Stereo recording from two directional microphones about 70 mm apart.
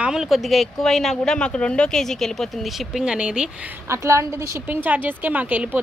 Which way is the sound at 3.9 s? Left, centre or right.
Right.